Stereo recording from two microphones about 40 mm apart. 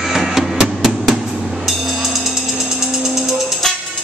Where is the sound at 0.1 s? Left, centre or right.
Centre.